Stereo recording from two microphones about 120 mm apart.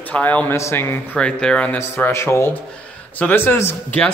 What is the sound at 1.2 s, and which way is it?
Speech, 10° left (ahead or behind).